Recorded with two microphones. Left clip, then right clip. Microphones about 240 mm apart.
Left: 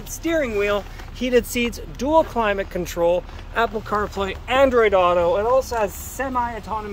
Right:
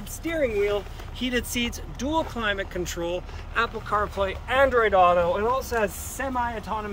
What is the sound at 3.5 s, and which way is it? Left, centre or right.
Speech, left.